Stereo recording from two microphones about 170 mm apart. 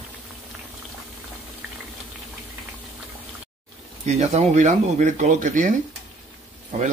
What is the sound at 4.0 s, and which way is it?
Speech, 40° right (ahead or behind).